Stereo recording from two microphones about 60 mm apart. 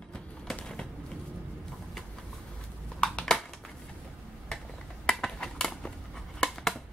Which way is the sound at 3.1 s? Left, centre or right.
Centre.